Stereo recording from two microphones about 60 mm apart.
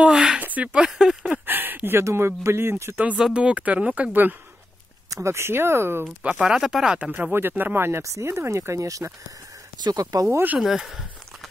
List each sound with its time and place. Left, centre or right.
0.0 s a sound: centre
0.4 s speech: right; by 1.3 s centre
1.4 s speech: right
2.0 s speech: right
3.2 s speech: centre; by 4.4 s right
5.1 s speech: right
6.4 s speech: centre
6.9 s speech: right
7.3 s speech: right
8.0 s speech: right
9.8 s speech: right
10.6 s speech: centre